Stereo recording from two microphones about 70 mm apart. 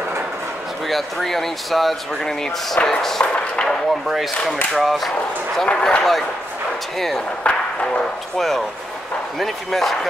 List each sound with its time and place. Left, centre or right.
0.8 s speech: centre
3.3 s chop: centre
4.7 s speech: centre
5.6 s a man's voice: centre
7.0 s speech: centre
7.5 s speech: centre
8.4 s speech: centre